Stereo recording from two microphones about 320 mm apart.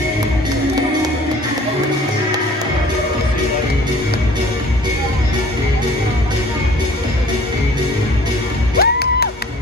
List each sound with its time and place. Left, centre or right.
8.7 s music: left